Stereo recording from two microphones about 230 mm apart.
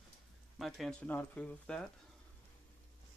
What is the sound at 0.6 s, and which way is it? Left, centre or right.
Speech, centre.